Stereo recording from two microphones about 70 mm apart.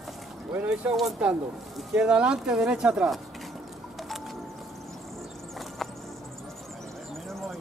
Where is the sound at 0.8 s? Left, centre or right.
Centre.